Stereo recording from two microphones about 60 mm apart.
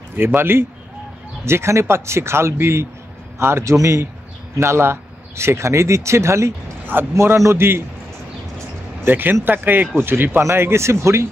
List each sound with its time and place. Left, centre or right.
0.1 s speech: right
9.0 s speech: right